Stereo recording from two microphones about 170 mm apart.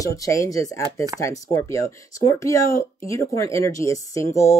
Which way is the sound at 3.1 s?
20° left (ahead or behind).